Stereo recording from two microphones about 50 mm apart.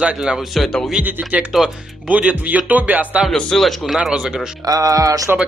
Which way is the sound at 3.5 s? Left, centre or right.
Centre.